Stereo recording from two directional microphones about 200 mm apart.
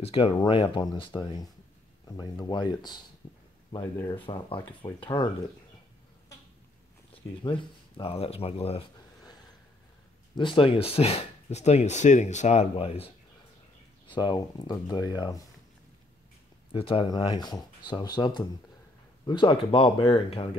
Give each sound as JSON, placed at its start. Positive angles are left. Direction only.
{"t": 0.0, "sound": "speech", "side_deg": 25}
{"t": 7.4, "sound": "speech", "side_deg": 25}
{"t": 16.7, "sound": "speech", "side_deg": 25}